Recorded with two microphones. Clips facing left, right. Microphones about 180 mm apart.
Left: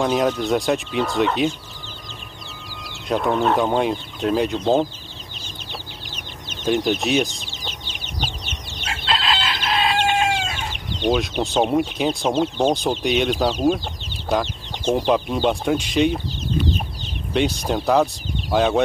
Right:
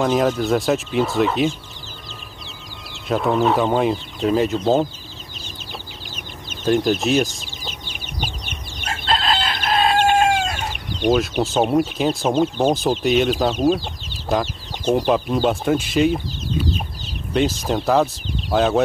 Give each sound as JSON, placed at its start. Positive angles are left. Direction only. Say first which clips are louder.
{"t": 0.0, "sound": "speech", "louder": "right 1 dB", "side_deg": 0}
{"t": 2.9, "sound": "speech", "louder": "right 1 dB", "side_deg": 0}
{"t": 6.6, "sound": "speech", "louder": "right 2 dB", "side_deg": 0}
{"t": 8.8, "sound": "chicken", "louder": "right 2 dB", "side_deg": -45}
{"t": 11.0, "sound": "speech", "louder": "right 2 dB", "side_deg": -5}
{"t": 17.3, "sound": "speech", "louder": "right 1 dB", "side_deg": 0}